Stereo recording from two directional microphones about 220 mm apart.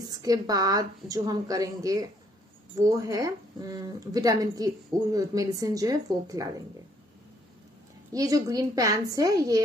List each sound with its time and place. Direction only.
0.2 s a woman's voice: 15° right (ahead or behind)
8.1 s a woman's voice: 15° right (ahead or behind)